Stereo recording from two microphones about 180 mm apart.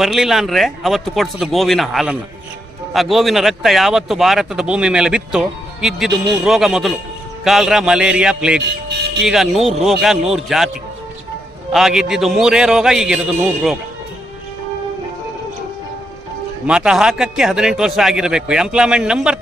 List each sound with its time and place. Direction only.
0.0 s a man's voice: centre (ahead or behind)
8.5 s music: 65° right (ahead or behind)
9.2 s a man's voice: centre (ahead or behind)
11.7 s a man's voice: centre (ahead or behind)
16.6 s a man's voice: 5° right (ahead or behind)